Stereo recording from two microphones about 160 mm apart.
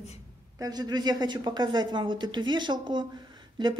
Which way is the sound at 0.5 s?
25° right (ahead or behind).